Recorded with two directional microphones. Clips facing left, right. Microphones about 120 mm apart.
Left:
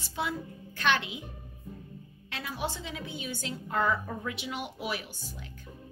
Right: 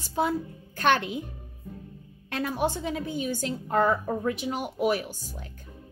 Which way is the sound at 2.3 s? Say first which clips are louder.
Right 8 dB; 50° right (ahead or behind).